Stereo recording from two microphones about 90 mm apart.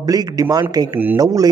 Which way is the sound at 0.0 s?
45° right (ahead or behind).